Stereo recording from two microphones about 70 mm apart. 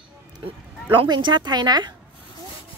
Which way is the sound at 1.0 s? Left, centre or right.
Right.